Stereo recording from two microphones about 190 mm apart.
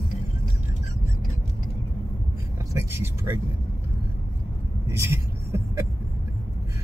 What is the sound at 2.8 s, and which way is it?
Speech, 15° right (ahead or behind).